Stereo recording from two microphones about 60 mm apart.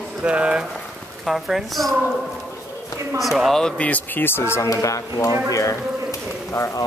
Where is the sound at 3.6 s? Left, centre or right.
Left.